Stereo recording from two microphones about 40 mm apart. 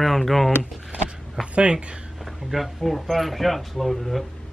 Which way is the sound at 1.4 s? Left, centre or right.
Right.